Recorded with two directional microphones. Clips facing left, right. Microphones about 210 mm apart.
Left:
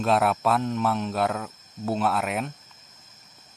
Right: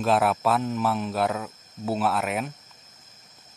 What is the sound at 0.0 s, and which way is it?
Speech, centre (ahead or behind).